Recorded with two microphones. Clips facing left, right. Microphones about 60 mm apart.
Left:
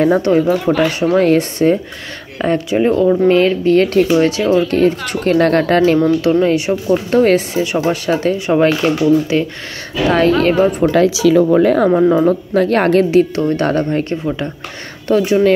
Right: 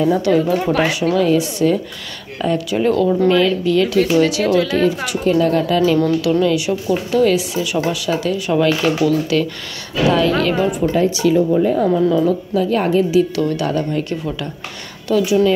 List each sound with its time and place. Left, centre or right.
0.2 s a woman's voice: left
2.4 s speech: left
3.3 s a woman's voice: left
6.2 s speech: left
10.0 s a woman's voice: left
10.9 s speech: left
11.9 s a woman's voice: left
13.2 s speech: left